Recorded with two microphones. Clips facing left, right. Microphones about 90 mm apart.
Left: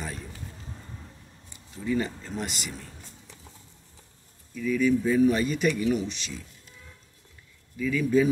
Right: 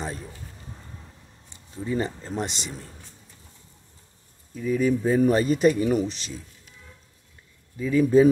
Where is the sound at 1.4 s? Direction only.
30° right (ahead or behind).